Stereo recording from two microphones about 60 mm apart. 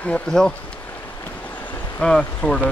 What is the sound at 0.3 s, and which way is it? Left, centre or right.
Speech, centre.